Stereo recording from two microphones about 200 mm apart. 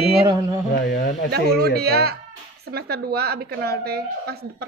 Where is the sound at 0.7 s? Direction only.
55° left (ahead or behind).